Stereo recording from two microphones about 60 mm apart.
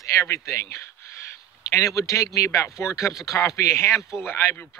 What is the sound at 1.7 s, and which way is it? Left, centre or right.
A man's voice, left.